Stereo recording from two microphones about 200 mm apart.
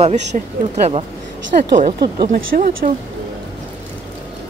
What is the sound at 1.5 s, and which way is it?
Speech, 40° right (ahead or behind).